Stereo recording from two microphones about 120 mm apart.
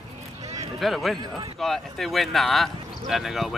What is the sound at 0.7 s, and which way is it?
Speech, centre (ahead or behind).